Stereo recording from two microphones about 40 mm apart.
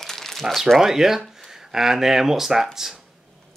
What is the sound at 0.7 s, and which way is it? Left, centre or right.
Speech, centre.